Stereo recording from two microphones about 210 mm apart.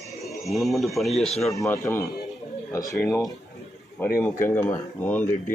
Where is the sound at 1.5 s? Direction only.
15° left (ahead or behind).